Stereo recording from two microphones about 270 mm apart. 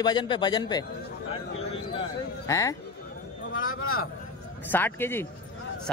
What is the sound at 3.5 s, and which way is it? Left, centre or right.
Speech, left.